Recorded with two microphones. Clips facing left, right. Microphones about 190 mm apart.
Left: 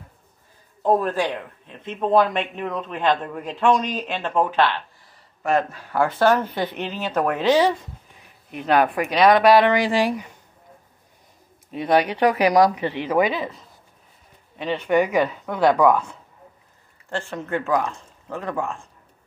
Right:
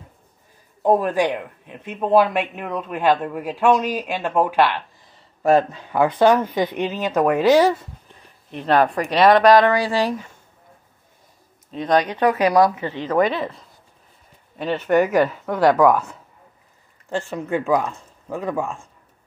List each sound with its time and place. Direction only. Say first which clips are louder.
0.8 s speech: right 3 dB; 15° right (ahead or behind)
5.4 s speech: right 5 dB; 30° right (ahead or behind)
5.8 s speech: right 3 dB; 15° right (ahead or behind)
8.5 s speech: right 1 dB; 5° left (ahead or behind)
9.7 s speech: even; 15° left (ahead or behind)
11.7 s speech: even; 10° left (ahead or behind)
14.6 s speech: right 2 dB; 5° right (ahead or behind)
17.3 s speech: right 3 dB; 15° right (ahead or behind)